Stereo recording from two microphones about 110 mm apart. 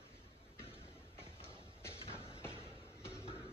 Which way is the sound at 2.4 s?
25° left (ahead or behind).